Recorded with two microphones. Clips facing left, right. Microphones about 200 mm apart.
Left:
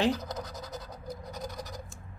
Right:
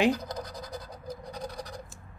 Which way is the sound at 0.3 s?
25° left (ahead or behind).